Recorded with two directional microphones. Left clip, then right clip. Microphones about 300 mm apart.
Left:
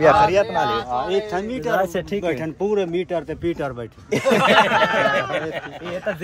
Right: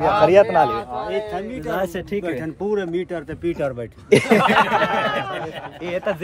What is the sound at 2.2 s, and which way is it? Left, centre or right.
Speech, left.